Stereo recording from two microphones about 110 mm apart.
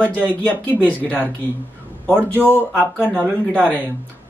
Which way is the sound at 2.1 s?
20° right (ahead or behind).